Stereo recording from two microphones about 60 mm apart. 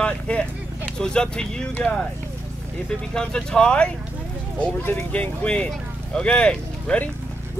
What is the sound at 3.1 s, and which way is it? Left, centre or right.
Speech, centre.